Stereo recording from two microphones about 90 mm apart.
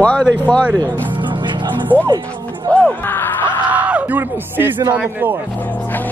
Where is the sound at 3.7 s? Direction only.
15° right (ahead or behind).